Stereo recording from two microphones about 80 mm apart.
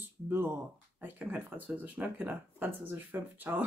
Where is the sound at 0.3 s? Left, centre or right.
Right.